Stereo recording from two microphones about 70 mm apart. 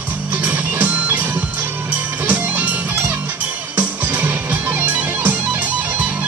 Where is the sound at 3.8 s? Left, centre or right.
Right.